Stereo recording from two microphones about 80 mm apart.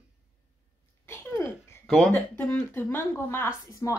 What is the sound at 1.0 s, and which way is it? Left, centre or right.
Speech, left.